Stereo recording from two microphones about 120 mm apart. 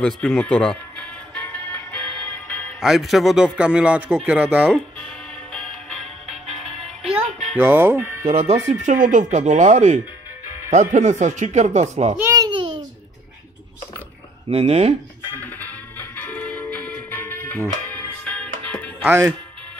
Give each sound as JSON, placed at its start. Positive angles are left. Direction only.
{"t": 0.0, "sound": "music", "side_deg": 5}
{"t": 2.8, "sound": "a man's voice", "side_deg": 0}
{"t": 4.7, "sound": "music", "side_deg": 5}
{"t": 7.5, "sound": "speech", "side_deg": -20}
{"t": 8.3, "sound": "speech", "side_deg": -55}
{"t": 8.8, "sound": "speech", "side_deg": -90}
{"t": 12.2, "sound": "babbling", "side_deg": -25}
{"t": 12.4, "sound": "babbling", "side_deg": -45}
{"t": 14.5, "sound": "speech", "side_deg": -60}
{"t": 15.3, "sound": "music", "side_deg": 15}
{"t": 19.0, "sound": "speech", "side_deg": -20}